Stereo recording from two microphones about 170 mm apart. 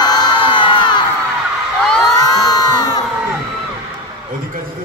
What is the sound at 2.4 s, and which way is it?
Crowd, 20° left (ahead or behind).